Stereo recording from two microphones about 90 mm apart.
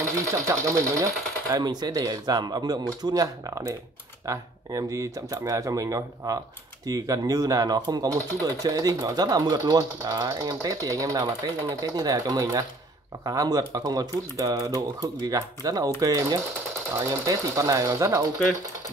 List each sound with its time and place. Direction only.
0.3 s speech: 35° right (ahead or behind)
1.6 s speech: 50° right (ahead or behind)